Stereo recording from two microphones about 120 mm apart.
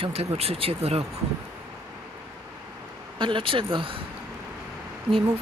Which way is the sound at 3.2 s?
45° right (ahead or behind).